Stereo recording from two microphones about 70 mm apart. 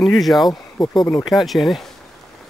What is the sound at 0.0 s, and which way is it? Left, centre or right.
Speech, centre.